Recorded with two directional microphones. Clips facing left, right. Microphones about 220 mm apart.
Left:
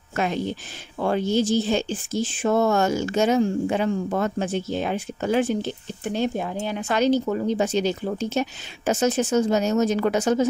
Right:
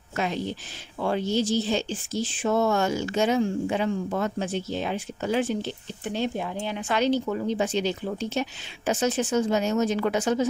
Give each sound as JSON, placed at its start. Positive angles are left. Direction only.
{"t": 0.1, "sound": "speech", "side_deg": 50}